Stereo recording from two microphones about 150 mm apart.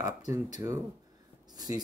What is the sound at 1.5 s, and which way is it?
Writing, 25° right (ahead or behind).